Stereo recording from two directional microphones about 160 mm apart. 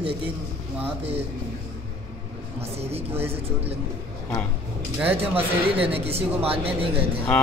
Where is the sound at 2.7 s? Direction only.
40° right (ahead or behind).